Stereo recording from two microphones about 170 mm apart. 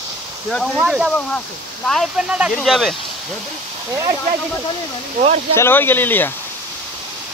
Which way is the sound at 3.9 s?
20° right (ahead or behind).